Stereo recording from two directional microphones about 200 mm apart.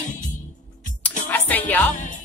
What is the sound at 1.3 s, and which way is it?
Music, 10° left (ahead or behind).